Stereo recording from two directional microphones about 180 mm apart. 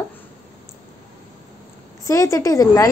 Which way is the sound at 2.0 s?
15° left (ahead or behind).